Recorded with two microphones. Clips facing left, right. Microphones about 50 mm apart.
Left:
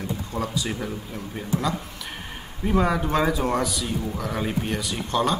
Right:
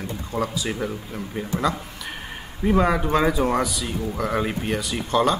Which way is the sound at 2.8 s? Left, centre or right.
Centre.